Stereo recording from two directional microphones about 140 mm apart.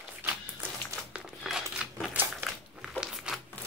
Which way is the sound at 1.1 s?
5° right (ahead or behind).